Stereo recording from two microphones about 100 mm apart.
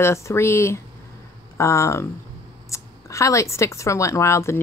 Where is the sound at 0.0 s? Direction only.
25° left (ahead or behind).